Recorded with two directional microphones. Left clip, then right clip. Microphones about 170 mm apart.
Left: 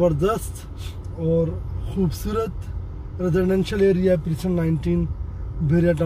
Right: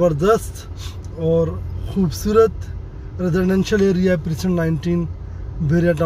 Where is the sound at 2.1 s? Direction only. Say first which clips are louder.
Right 11 dB; 20° right (ahead or behind).